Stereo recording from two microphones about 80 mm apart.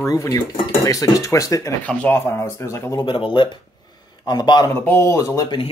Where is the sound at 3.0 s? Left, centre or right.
Left.